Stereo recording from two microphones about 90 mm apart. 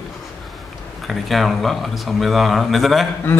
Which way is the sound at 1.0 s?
Centre (ahead or behind).